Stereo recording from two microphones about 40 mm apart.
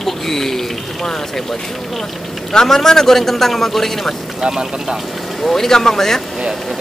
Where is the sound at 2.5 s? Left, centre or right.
Centre.